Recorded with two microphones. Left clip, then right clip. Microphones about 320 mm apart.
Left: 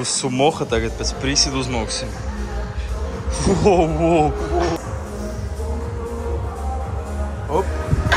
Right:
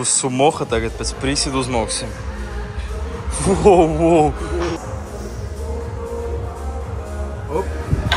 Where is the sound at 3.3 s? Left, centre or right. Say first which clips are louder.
Right 4 dB; centre.